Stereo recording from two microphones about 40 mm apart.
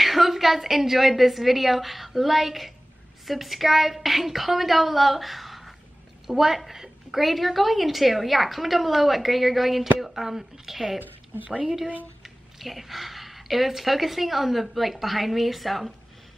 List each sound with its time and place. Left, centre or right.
0.0 s a woman's voice: centre
11.0 s speech: right
12.2 s a woman's voice: centre